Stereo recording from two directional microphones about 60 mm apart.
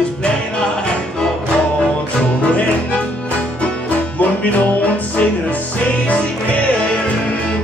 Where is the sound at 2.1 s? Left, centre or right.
Centre.